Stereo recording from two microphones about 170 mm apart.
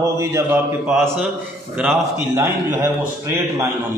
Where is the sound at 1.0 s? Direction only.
Centre (ahead or behind); by 3.6 s 15° right (ahead or behind).